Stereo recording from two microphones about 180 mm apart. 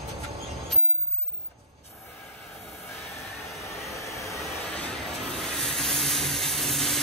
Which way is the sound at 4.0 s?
15° left (ahead or behind).